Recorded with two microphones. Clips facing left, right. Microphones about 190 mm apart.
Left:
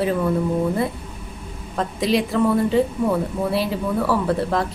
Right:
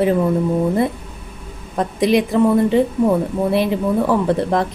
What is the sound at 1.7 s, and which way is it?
A woman's voice, 15° right (ahead or behind).